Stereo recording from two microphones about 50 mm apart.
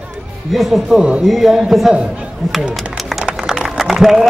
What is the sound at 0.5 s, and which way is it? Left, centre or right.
Speech, centre.